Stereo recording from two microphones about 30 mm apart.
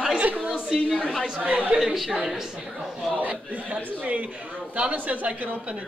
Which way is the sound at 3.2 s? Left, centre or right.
Right.